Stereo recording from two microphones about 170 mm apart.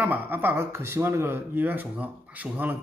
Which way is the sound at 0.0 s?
10° right (ahead or behind).